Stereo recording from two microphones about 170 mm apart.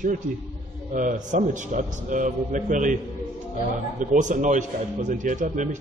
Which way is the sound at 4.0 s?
45° right (ahead or behind).